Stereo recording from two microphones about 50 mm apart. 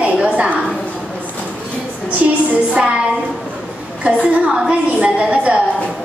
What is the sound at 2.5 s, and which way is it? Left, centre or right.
Speech, right.